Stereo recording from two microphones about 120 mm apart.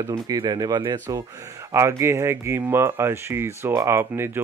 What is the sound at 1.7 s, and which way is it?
Speech, 20° right (ahead or behind).